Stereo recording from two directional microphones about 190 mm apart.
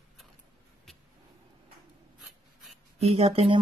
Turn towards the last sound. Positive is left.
turn(degrees=-30)  # may be behind; listen again after turning